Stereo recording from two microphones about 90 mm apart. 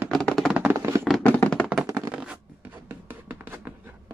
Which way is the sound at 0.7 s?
35° right (ahead or behind).